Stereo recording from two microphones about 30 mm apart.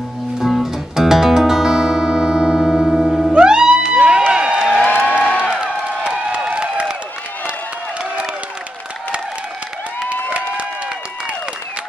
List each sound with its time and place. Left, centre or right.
0.4 s music: centre
3.0 s music: centre
3.3 s music: right
4.3 s a sound: right
4.8 s music: left
5.4 s a sound: right